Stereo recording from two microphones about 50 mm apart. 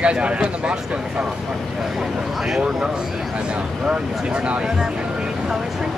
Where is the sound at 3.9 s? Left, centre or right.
Right.